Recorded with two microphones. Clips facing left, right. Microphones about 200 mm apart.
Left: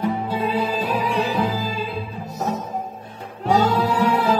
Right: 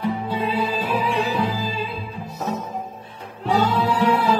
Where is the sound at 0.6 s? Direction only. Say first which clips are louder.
Left 1 dB; 45° left (ahead or behind).